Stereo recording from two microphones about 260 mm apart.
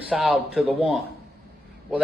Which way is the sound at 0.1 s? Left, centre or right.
Centre.